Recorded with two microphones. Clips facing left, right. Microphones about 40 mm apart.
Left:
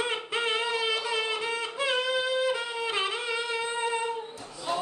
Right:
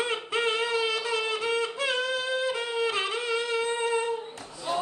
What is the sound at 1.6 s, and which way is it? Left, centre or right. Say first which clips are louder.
Wind instrument: even; left.